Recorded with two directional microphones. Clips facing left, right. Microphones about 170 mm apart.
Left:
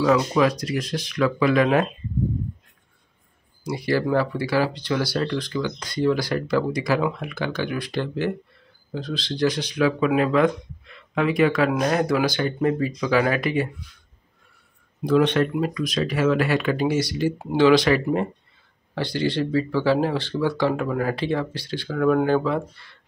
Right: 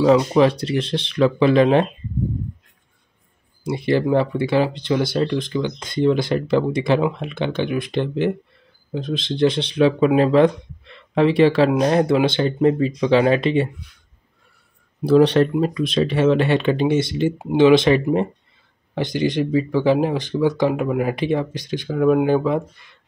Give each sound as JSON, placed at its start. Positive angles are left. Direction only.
{"t": 0.0, "sound": "speech", "side_deg": -25}
{"t": 3.6, "sound": "speech", "side_deg": -25}
{"t": 15.0, "sound": "speech", "side_deg": -35}